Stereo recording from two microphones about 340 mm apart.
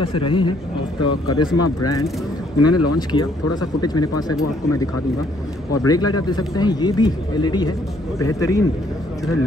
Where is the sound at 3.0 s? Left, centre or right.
Centre.